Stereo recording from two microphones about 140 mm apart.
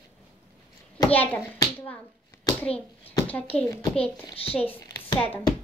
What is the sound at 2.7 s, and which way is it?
Speech, 45° left (ahead or behind).